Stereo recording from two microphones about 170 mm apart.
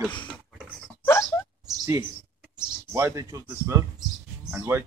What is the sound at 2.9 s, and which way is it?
Speech, 15° right (ahead or behind).